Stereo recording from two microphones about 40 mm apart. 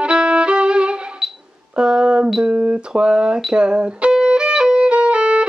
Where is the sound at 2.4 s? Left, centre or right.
Right.